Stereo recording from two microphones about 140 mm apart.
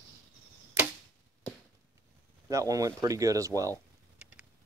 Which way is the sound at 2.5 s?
25° right (ahead or behind).